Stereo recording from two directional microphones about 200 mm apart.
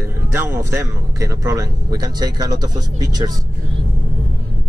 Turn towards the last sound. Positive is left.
turn(degrees=-20)  # may be behind; listen again after turning